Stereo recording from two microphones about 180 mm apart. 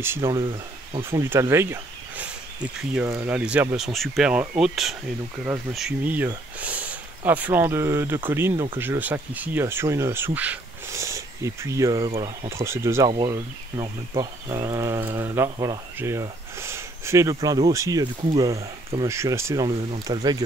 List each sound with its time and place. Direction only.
0.0 s speech: 15° right (ahead or behind)
1.3 s speech: 15° right (ahead or behind)
12.0 s speech: 30° right (ahead or behind)
12.4 s speech: 15° right (ahead or behind)
13.1 s speech: 25° right (ahead or behind)
18.3 s speech: 30° right (ahead or behind)
19.0 s speech: 15° right (ahead or behind)